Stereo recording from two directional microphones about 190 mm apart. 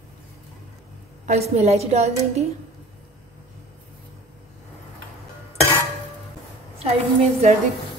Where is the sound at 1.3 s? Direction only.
35° right (ahead or behind).